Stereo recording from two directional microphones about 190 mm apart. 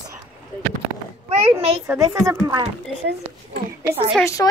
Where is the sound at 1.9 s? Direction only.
15° right (ahead or behind).